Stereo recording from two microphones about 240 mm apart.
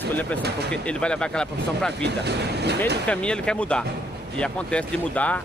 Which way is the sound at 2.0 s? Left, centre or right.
Right.